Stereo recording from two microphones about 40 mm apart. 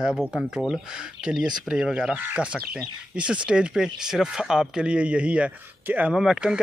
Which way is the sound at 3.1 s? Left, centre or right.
Right.